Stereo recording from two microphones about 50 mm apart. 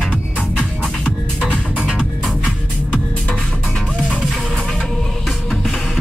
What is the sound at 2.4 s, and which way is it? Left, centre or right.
Music, left.